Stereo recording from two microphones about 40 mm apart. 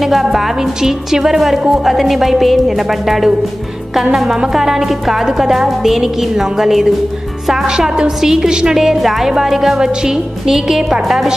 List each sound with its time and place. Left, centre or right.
0.0 s a woman's voice: centre; by 8.7 s right
8.7 s a woman's voice: centre